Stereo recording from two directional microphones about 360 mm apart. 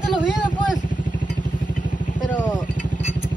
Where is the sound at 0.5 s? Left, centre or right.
Left.